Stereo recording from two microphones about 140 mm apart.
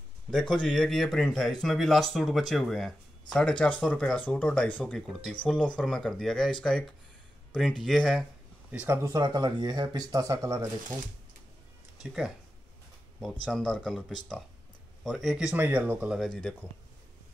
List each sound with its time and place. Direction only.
0.3 s speech: 5° left (ahead or behind)
8.7 s speech: 15° right (ahead or behind)
12.0 s speech: 5° right (ahead or behind)
16.2 s speech: 5° left (ahead or behind)